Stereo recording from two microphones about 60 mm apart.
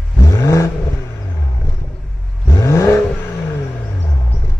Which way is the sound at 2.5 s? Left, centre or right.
Left.